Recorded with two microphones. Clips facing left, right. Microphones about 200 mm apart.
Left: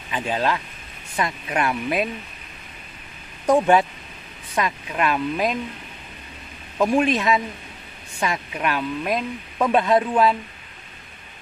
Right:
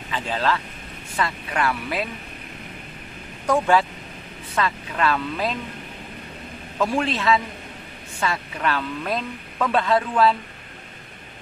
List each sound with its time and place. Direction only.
0.1 s speech: 15° left (ahead or behind)
3.4 s speech: 20° left (ahead or behind)
6.8 s speech: 15° left (ahead or behind)